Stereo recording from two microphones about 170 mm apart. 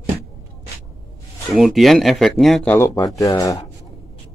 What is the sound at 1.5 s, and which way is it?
Speech, centre (ahead or behind).